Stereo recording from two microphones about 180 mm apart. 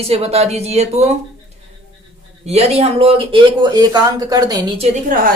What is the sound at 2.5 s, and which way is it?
A man's voice, 35° right (ahead or behind).